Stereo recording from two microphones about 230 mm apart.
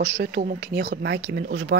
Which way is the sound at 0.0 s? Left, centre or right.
Right.